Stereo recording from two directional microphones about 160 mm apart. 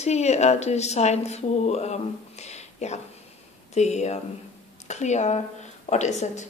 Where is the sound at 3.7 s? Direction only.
45° left (ahead or behind).